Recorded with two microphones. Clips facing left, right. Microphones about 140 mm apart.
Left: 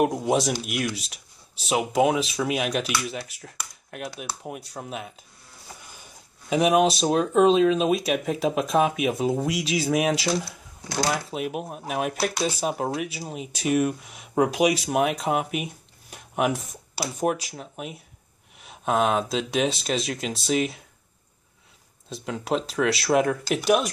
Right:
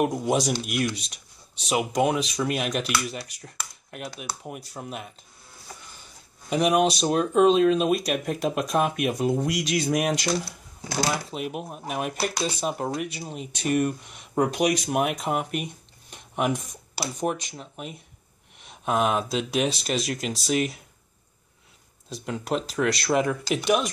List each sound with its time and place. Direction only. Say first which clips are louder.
0.0 s speech: left 1 dB; centre (ahead or behind)
6.5 s speech: left 2 dB; centre (ahead or behind)
22.1 s speech: left 1 dB; centre (ahead or behind)